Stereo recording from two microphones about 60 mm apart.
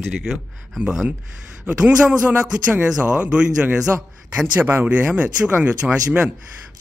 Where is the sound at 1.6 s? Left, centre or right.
Right.